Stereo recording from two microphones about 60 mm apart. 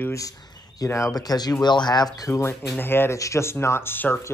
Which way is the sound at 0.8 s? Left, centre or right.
Left.